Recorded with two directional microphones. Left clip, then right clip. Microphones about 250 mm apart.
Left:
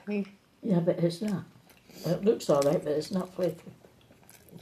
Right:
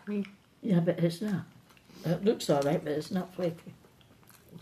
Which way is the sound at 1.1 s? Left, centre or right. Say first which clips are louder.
Left 1 dB; right.